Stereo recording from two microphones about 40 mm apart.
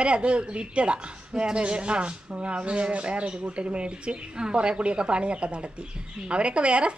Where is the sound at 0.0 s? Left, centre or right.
Right.